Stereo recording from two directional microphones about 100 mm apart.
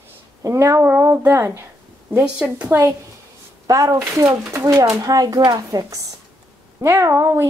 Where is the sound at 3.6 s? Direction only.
35° right (ahead or behind).